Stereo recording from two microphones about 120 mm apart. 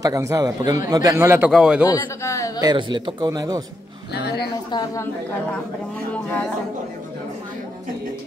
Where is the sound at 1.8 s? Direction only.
25° left (ahead or behind).